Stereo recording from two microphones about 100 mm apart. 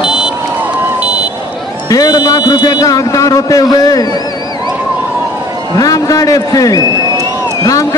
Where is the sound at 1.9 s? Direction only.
40° left (ahead or behind).